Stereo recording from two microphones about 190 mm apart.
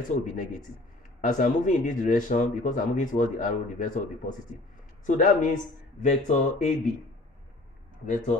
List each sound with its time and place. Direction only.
0.2 s speech: 40° left (ahead or behind)